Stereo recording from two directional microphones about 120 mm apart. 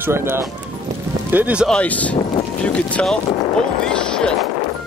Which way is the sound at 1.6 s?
10° left (ahead or behind).